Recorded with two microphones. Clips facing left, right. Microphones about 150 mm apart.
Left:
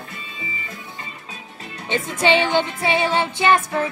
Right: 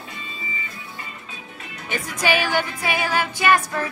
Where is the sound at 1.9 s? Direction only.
25° left (ahead or behind).